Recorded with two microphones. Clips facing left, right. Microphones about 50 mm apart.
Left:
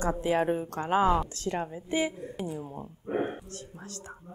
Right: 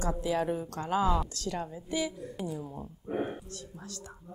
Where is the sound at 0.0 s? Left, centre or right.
Left.